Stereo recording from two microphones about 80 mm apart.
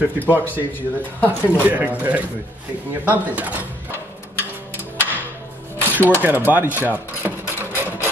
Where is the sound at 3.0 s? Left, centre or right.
Centre.